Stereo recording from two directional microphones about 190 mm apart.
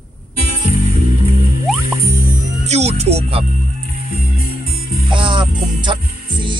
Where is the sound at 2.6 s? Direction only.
35° right (ahead or behind).